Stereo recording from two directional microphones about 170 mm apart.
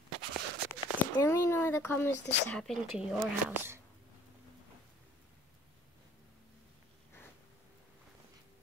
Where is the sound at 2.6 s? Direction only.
Centre (ahead or behind).